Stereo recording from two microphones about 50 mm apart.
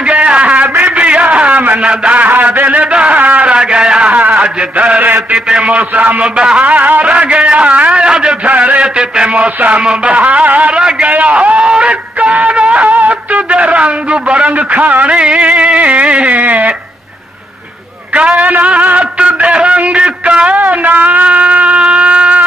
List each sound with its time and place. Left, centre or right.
0.0 s a sound: right
1.8 s a man's voice: right
2.2 s a sound: right
5.3 s a man's voice: right
6.3 s a man's voice: centre
6.6 s a man's voice: right
8.0 s a man's voice: centre
8.5 s a man's voice: right
10.8 s a man's voice: centre
11.1 s speech: right
18.1 s a man's voice: right
18.4 s a sound: right
20.5 s a sound: right